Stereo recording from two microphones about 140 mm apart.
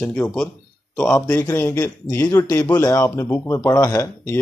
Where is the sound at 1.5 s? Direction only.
15° left (ahead or behind).